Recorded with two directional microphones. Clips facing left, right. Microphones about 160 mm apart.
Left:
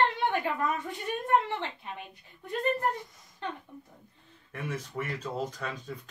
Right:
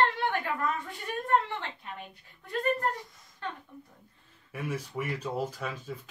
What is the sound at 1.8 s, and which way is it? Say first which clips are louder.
Speech: left 1 dB; 20° left (ahead or behind).